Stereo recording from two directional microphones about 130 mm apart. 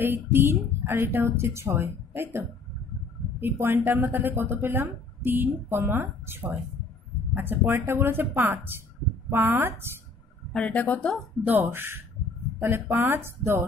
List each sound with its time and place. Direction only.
0.0 s speech: 15° right (ahead or behind)
10.5 s speech: 10° left (ahead or behind)
11.4 s speech: 15° right (ahead or behind)